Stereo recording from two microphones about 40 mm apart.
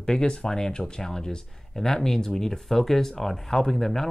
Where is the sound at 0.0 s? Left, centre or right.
Centre.